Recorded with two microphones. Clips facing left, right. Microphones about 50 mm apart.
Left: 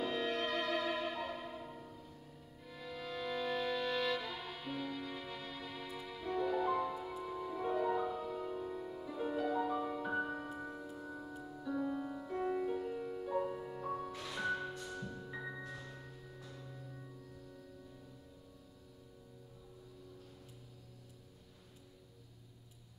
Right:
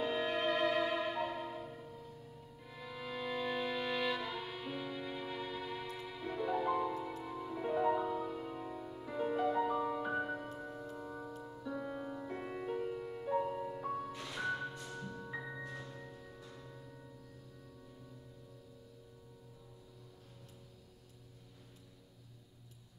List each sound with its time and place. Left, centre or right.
0.0 s music: centre
2.6 s violin: centre
5.9 s music: centre
10.5 s music: centre
11.8 s music: centre
13.7 s music: centre